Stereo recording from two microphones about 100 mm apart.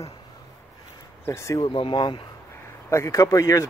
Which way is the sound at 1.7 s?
55° left (ahead or behind).